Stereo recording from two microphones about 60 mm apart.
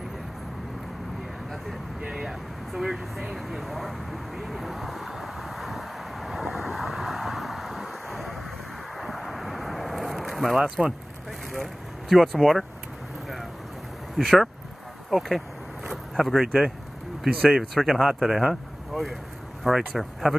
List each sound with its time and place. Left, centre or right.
2.0 s vehicle: centre
10.6 s speech: centre
11.5 s speech: centre
14.1 s speech: centre
15.0 s a sound: centre
17.6 s speech: centre